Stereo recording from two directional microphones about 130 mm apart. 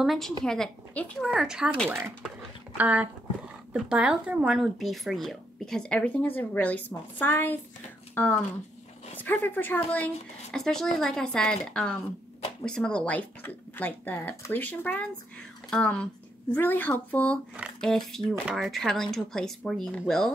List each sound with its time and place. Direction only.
0.0 s a woman's voice: centre (ahead or behind)
1.9 s speech: 15° right (ahead or behind); by 20.2 s 5° left (ahead or behind)